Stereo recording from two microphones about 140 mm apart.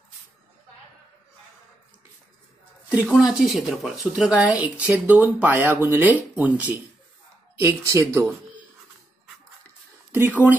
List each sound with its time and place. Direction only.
2.9 s speech: 5° right (ahead or behind)
10.1 s speech: 15° right (ahead or behind)